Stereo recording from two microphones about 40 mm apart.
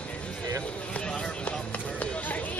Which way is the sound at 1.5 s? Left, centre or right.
Left.